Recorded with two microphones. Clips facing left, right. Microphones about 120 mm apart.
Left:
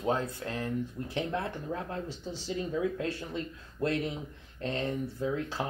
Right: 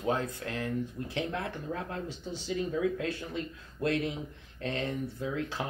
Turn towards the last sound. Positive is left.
turn(degrees=30)  # may be behind; listen again after turning